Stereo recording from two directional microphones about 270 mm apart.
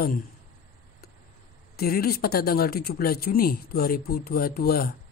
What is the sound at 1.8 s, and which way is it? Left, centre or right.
Speech, left.